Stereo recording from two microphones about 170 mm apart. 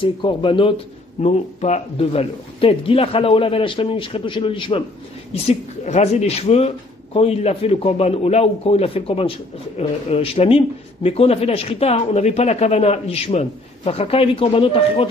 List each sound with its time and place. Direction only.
0.0 s a man's voice: 30° left (ahead or behind)
5.3 s a man's voice: 40° left (ahead or behind)